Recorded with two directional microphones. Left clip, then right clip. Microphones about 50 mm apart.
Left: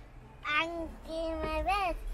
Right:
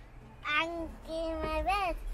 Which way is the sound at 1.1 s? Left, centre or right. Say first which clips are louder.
Even; right.